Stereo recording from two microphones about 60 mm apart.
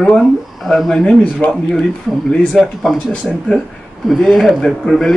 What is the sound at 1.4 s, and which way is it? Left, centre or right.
Speech, left.